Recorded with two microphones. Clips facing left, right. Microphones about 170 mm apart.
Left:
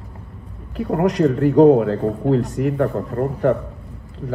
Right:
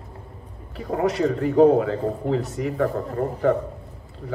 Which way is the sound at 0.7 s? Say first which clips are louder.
Left 4 dB; 65° left (ahead or behind).